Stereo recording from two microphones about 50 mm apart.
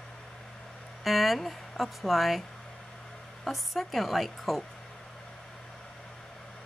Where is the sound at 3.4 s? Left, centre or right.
Centre.